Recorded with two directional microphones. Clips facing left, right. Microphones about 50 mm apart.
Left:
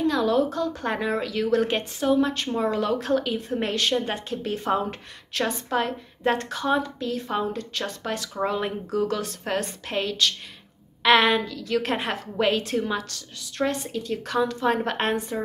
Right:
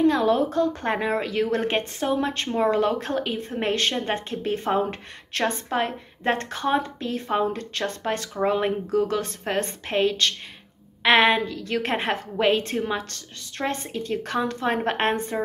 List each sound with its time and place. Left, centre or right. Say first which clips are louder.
0.0 s a woman's voice: right 2 dB; right
5.3 s a woman's voice: right 2 dB; right
5.7 s a woman's voice: even; right
8.5 s a woman's voice: right 6 dB; right
13.6 s a woman's voice: left 2 dB; right